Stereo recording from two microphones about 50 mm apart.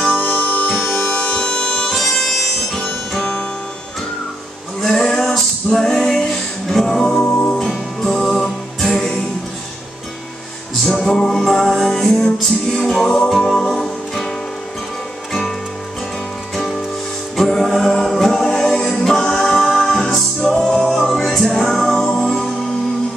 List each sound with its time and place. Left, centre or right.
0.2 s music: left
0.7 s music: centre
1.0 s harmonica: centre
4.8 s music: centre
7.5 s music: centre
10.8 s music: centre
16.5 s music: centre